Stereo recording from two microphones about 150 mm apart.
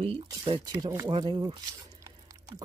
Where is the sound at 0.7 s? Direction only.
25° right (ahead or behind).